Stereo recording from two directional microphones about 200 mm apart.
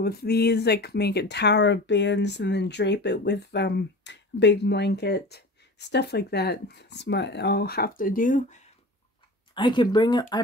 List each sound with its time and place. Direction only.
0.0 s speech: 50° left (ahead or behind)
9.5 s speech: 25° left (ahead or behind)